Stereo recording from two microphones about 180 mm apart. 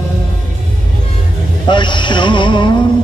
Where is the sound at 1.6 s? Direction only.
25° left (ahead or behind).